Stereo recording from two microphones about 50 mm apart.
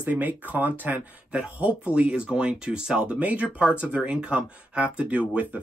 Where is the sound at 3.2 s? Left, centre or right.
Right.